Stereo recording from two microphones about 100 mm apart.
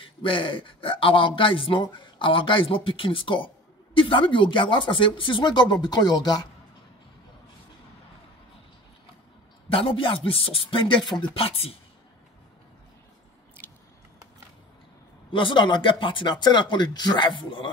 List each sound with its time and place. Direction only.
0.0 s a man's voice: 60° left (ahead or behind); by 6.4 s 40° left (ahead or behind)
9.7 s a man's voice: 70° left (ahead or behind)
15.3 s speech: 55° left (ahead or behind)